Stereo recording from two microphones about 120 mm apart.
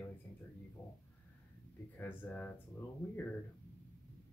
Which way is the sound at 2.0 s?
15° left (ahead or behind).